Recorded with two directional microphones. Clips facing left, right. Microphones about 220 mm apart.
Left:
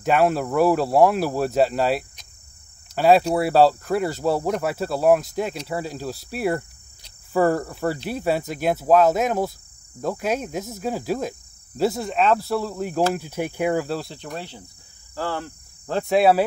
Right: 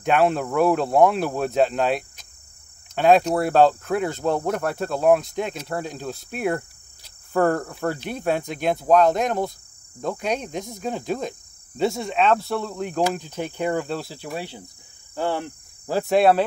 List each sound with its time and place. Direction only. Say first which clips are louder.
0.0 s cricket: even; 5° left (ahead or behind); by 15.5 s 20° right (ahead or behind)
15.9 s cricket: even; centre (ahead or behind)